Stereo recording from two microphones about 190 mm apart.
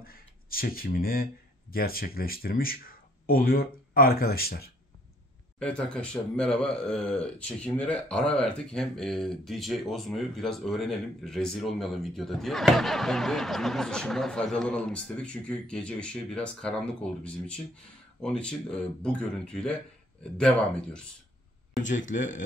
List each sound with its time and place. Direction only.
0.0 s speech: 50° left (ahead or behind)
5.6 s speech: 5° left (ahead or behind)
21.8 s speech: 40° left (ahead or behind)